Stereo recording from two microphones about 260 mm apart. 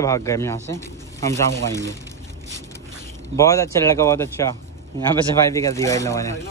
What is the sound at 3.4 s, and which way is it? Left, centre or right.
Speech, centre.